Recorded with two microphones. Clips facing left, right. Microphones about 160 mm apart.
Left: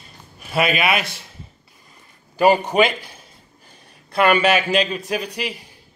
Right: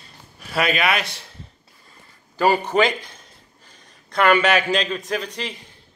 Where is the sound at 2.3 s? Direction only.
15° left (ahead or behind).